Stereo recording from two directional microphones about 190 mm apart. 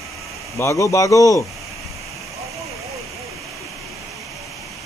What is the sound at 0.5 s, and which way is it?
Speech, 15° left (ahead or behind).